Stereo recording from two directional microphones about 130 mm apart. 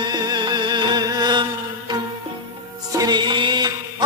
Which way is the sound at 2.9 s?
30° right (ahead or behind).